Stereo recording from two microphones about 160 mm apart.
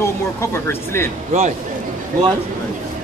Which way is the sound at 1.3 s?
45° right (ahead or behind).